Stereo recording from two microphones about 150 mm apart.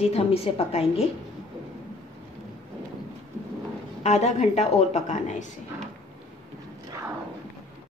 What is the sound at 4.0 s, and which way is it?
A woman's voice, 50° left (ahead or behind).